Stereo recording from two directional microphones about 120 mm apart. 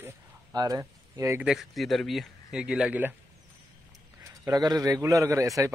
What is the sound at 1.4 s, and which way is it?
Speech, centre (ahead or behind).